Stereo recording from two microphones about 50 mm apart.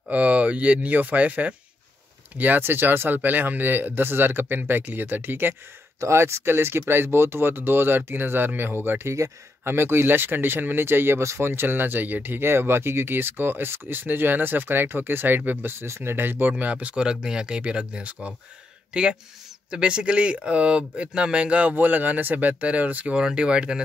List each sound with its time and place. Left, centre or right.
0.1 s speech: right
5.9 s speech: right
9.0 s speech: right
9.7 s speech: right
15.8 s speech: right
16.5 s speech: right
16.9 s speech: centre
21.7 s speech: right
23.1 s speech: centre